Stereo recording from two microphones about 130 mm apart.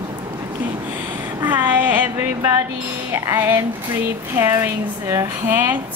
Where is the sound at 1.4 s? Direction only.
15° right (ahead or behind).